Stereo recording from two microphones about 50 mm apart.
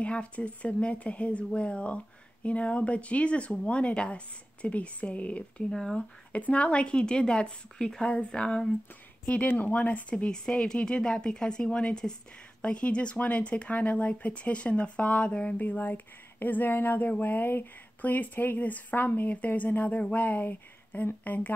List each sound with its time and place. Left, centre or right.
0.0 s speech: left
5.6 s speech: centre
5.9 s speech: left
9.2 s speech: left
10.1 s speech: centre; by 21.5 s left